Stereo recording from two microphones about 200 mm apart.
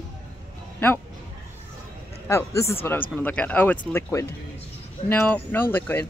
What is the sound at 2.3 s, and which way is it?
Speech, 15° left (ahead or behind).